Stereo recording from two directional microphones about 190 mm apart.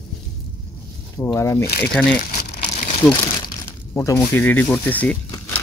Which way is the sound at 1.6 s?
55° left (ahead or behind).